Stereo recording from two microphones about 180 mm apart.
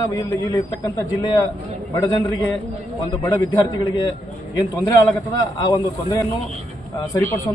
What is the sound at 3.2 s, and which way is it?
Speech, 15° left (ahead or behind).